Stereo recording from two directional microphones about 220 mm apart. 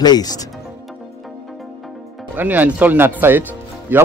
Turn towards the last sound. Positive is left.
turn(degrees=-10)  # may be behind; listen again after turning